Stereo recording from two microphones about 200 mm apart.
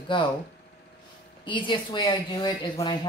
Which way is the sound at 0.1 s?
25° left (ahead or behind).